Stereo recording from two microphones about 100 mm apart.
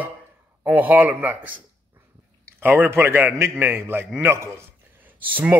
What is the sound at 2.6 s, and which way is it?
A man's voice, 20° right (ahead or behind).